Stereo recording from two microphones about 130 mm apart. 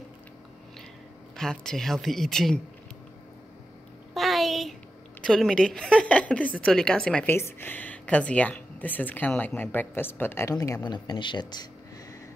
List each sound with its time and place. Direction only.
1.3 s speech: 5° left (ahead or behind)
4.1 s a sound: centre (ahead or behind)
5.2 s speech: 5° left (ahead or behind)
7.2 s speech: 15° left (ahead or behind)
10.5 s speech: 25° left (ahead or behind)